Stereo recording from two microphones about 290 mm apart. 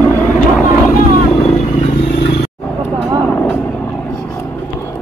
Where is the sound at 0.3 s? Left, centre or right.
Left.